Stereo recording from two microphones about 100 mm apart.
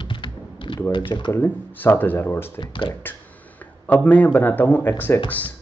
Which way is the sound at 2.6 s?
55° left (ahead or behind).